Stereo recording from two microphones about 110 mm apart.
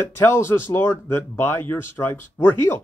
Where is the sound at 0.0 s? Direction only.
20° left (ahead or behind).